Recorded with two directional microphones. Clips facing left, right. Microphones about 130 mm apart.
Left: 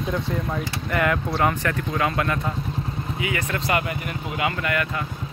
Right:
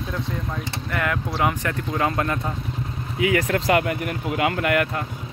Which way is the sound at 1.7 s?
25° right (ahead or behind).